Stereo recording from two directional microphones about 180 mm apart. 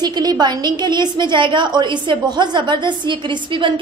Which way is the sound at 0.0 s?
20° right (ahead or behind).